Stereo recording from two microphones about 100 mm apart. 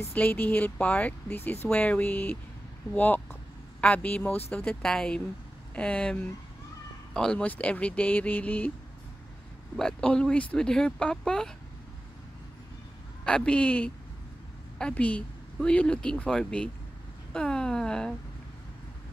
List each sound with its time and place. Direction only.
0.0 s speech: 15° left (ahead or behind)
9.8 s speech: 10° left (ahead or behind)
13.2 s speech: 10° left (ahead or behind)